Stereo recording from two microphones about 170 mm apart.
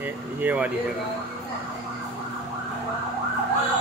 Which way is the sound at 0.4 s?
10° right (ahead or behind).